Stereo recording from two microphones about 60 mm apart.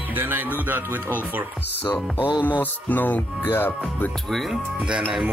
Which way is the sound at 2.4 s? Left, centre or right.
Left.